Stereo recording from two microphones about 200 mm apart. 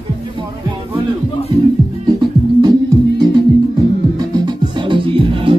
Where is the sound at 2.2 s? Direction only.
20° right (ahead or behind).